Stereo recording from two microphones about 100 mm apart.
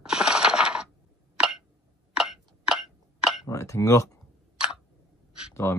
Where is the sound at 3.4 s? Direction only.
30° left (ahead or behind).